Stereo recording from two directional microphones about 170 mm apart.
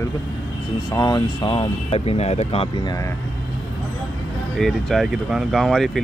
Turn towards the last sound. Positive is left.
turn(degrees=0)  # may be behind; listen again after turning